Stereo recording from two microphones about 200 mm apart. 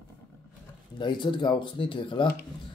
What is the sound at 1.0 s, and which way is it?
Speech, 25° left (ahead or behind).